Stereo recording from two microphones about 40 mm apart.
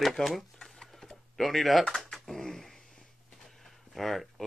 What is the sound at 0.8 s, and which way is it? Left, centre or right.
Sewing machine, centre.